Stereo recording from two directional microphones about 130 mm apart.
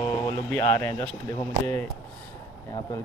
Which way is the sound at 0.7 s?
20° left (ahead or behind).